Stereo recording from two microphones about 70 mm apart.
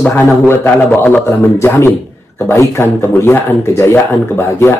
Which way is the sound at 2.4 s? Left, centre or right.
Left.